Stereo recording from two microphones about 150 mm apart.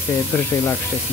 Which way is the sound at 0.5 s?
20° left (ahead or behind).